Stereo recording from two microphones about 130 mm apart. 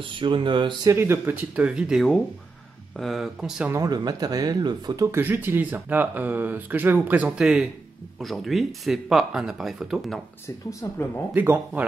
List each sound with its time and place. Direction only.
0.1 s speech: 40° right (ahead or behind)
0.8 s speech: 20° right (ahead or behind)
3.7 s speech: 30° right (ahead or behind); by 10.2 s 5° right (ahead or behind)
10.4 s speech: 20° left (ahead or behind)
11.3 s speech: 15° right (ahead or behind)